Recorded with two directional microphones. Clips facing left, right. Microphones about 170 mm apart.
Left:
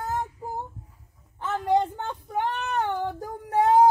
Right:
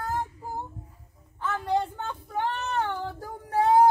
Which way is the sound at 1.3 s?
20° left (ahead or behind).